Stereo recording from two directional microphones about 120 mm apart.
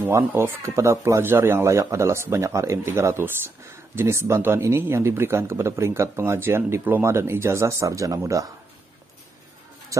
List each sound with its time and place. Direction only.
0.0 s speech: 20° right (ahead or behind)